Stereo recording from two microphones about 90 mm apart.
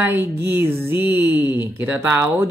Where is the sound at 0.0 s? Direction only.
25° right (ahead or behind).